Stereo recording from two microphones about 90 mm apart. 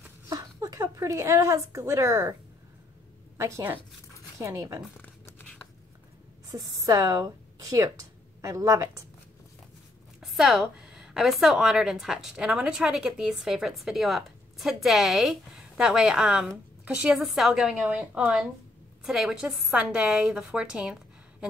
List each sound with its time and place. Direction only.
0.3 s speech: 40° right (ahead or behind)
3.3 s a woman's voice: 35° right (ahead or behind)
6.5 s a woman's voice: 40° right (ahead or behind)
10.2 s a woman's voice: centre (ahead or behind)